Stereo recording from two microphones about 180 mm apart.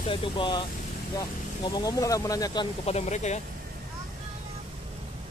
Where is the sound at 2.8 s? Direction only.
35° left (ahead or behind).